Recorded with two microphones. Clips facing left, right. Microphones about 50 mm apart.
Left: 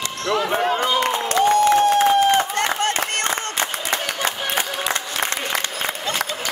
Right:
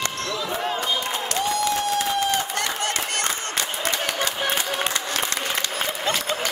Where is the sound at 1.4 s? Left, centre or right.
Left.